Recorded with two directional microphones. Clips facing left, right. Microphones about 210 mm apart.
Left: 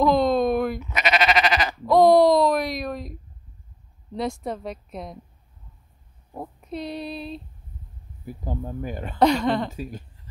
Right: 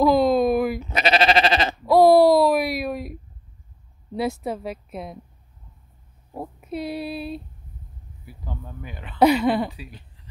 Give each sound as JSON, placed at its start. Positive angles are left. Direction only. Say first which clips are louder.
{"t": 0.0, "sound": "a sound", "louder": "right 2 dB", "side_deg": -5}
{"t": 0.7, "sound": "sheep", "louder": "right 3 dB", "side_deg": -30}
{"t": 1.9, "sound": "a sound", "louder": "right 1 dB", "side_deg": -5}
{"t": 4.1, "sound": "a woman's voice", "louder": "right 2 dB", "side_deg": -5}
{"t": 6.3, "sound": "speech", "louder": "right 2 dB", "side_deg": -5}
{"t": 8.3, "sound": "speech", "louder": "left 7 dB", "side_deg": 45}
{"t": 9.2, "sound": "speech", "louder": "right 2 dB", "side_deg": -5}
{"t": 9.7, "sound": "speech", "louder": "left 6 dB", "side_deg": 45}